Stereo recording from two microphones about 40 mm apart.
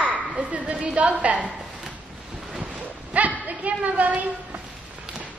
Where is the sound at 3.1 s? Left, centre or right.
Right.